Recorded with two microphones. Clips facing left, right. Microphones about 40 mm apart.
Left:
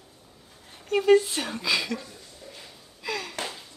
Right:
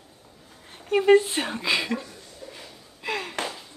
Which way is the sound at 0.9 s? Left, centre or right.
Right.